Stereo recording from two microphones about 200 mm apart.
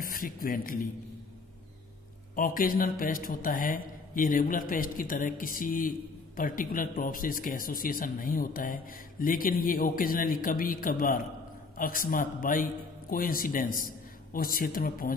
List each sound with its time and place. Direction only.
0.0 s speech: 45° left (ahead or behind)
2.3 s speech: 45° left (ahead or behind)